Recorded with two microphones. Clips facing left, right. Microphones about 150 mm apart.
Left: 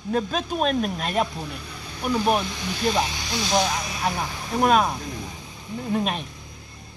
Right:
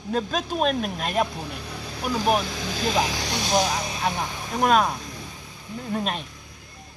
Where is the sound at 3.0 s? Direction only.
90° right.